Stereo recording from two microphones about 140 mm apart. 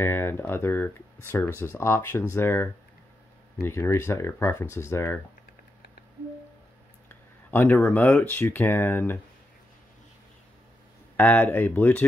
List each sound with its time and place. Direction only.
0.0 s speech: 15° left (ahead or behind)
7.5 s speech: 15° left (ahead or behind)
11.1 s speech: 10° left (ahead or behind)